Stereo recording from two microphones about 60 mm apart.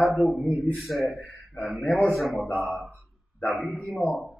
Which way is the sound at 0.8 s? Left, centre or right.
Centre.